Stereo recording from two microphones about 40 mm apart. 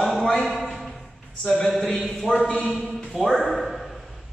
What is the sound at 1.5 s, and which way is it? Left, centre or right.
Speech, centre.